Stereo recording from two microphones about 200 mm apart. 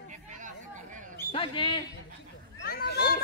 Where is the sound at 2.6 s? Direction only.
50° left (ahead or behind).